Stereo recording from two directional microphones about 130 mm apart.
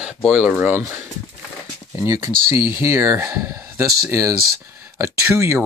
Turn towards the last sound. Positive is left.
turn(degrees=-20)  # may be behind; listen again after turning